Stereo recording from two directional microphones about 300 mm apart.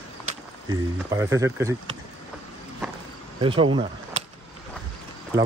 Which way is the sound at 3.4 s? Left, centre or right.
Centre.